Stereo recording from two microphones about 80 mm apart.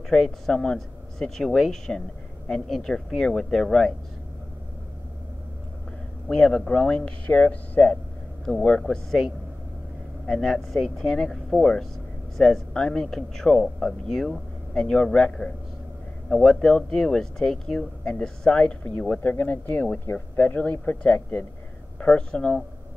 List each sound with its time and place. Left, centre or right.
0.1 s speech: centre
6.2 s speech: centre